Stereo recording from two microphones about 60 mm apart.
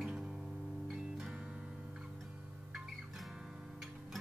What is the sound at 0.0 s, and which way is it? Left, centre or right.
Music, centre.